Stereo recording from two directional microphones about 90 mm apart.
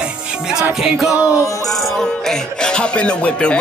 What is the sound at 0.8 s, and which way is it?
Music, 5° right (ahead or behind).